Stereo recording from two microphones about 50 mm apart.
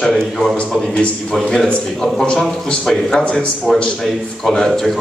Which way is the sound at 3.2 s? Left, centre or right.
Left.